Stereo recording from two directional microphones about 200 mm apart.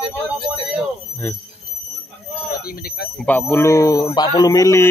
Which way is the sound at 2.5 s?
50° left (ahead or behind).